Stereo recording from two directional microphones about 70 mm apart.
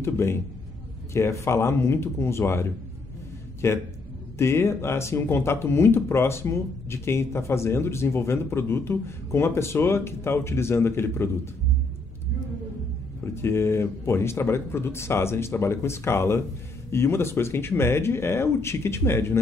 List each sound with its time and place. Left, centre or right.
0.0 s a man's voice: left
13.2 s speech: left